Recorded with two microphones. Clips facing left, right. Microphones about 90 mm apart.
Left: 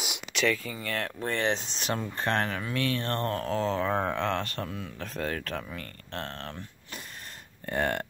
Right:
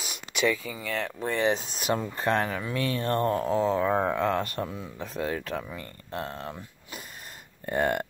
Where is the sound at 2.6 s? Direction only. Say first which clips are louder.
Right 2 dB; 25° right (ahead or behind).